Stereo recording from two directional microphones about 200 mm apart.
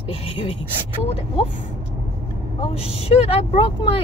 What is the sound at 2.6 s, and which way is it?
Speech, 30° left (ahead or behind).